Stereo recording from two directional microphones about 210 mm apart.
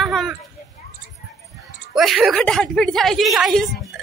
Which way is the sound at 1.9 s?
Centre (ahead or behind).